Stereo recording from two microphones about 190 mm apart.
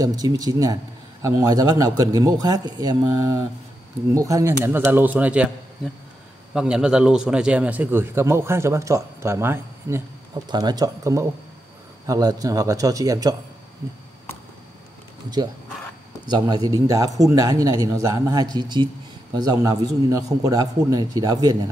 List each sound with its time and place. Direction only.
0.0 s a man's voice: 20° right (ahead or behind)
6.5 s a man's voice: 5° right (ahead or behind)
16.3 s speech: 20° right (ahead or behind)